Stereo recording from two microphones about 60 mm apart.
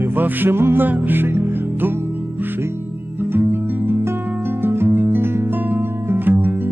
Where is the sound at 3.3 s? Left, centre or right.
Right.